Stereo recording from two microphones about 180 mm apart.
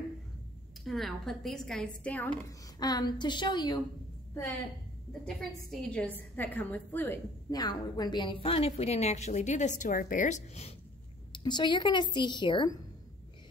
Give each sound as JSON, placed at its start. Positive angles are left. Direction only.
{"t": 0.8, "sound": "a woman's voice", "side_deg": 0}
{"t": 2.8, "sound": "speech", "side_deg": 20}
{"t": 5.2, "sound": "a woman's voice", "side_deg": 5}
{"t": 7.5, "sound": "a woman's voice", "side_deg": 20}
{"t": 11.3, "sound": "speech", "side_deg": 25}